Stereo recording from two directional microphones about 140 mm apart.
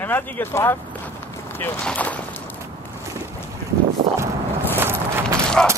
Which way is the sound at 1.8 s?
10° left (ahead or behind).